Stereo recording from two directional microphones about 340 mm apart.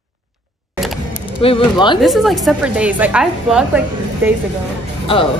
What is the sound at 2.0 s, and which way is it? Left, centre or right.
A woman's voice, centre.